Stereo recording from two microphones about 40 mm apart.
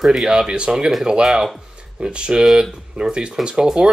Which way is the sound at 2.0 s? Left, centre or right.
Right.